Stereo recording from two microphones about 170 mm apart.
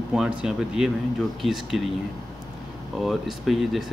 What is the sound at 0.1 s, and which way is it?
Speech, 5° right (ahead or behind).